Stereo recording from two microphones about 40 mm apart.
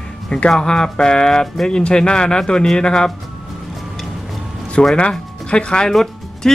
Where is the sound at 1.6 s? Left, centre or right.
Centre.